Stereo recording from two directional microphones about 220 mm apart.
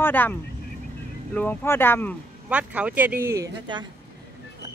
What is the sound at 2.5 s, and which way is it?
Speech, 5° right (ahead or behind).